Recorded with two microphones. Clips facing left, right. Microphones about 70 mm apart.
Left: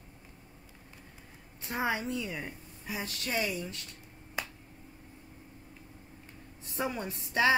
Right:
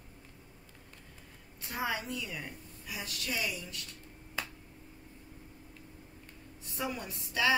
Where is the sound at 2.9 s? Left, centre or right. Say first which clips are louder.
Left 4 dB; left.